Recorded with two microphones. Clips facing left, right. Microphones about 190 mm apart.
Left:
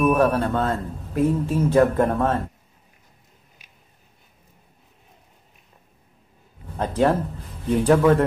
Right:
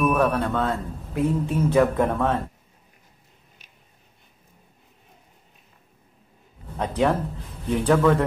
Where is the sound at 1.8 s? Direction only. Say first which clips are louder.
Left 2 dB; 5° left (ahead or behind).